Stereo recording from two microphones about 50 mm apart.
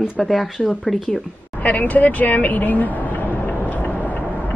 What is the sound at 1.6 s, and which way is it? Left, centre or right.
Speech, left.